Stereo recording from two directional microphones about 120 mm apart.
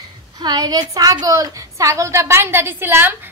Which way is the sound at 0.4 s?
35° right (ahead or behind).